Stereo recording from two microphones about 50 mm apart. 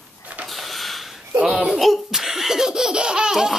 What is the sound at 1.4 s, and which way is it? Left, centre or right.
Speech, right.